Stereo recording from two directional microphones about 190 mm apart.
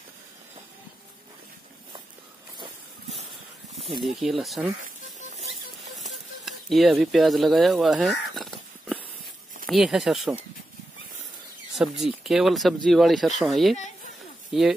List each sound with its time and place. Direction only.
4.0 s speech: centre (ahead or behind)
6.4 s speech: centre (ahead or behind)
11.7 s speech: centre (ahead or behind)
13.7 s a sound: 40° left (ahead or behind)
14.5 s speech: centre (ahead or behind)